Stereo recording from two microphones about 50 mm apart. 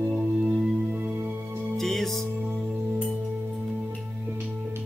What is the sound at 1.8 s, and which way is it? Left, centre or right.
Music, centre.